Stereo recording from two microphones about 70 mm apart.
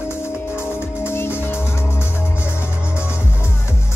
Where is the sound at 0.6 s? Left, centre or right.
Left.